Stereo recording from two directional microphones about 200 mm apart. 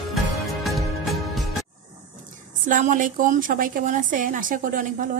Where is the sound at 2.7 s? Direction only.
40° right (ahead or behind).